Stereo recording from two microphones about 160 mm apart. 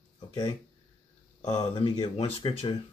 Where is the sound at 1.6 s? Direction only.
30° left (ahead or behind).